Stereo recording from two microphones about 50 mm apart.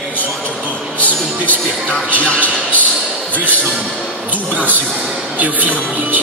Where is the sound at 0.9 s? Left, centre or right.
Left.